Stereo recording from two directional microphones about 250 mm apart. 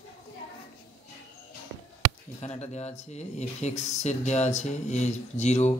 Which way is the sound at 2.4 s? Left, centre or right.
Left.